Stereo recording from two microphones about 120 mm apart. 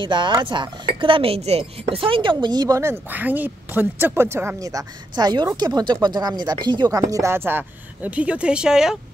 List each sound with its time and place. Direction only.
0.0 s speech: 40° right (ahead or behind)
2.8 s speech: 15° right (ahead or behind)